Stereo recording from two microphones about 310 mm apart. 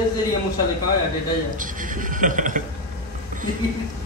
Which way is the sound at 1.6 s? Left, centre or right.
Right.